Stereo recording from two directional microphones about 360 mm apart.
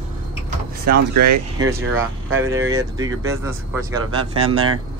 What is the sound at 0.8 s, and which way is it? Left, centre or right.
Speech, right.